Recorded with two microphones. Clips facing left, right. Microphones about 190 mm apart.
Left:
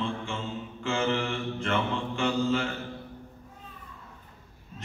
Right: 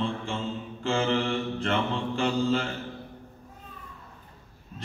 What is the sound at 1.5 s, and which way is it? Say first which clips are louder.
Mantra: right 1 dB; 35° right (ahead or behind).